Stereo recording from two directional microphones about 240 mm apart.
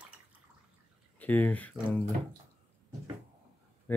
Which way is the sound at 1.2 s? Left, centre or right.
Centre.